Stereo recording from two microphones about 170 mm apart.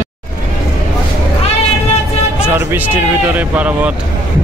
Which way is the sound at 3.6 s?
10° right (ahead or behind).